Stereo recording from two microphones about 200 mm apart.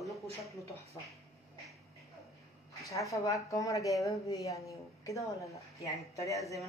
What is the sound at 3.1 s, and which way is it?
Speech, 15° left (ahead or behind).